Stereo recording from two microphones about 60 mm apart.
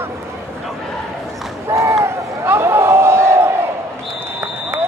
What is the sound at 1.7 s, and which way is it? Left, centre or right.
Run, right.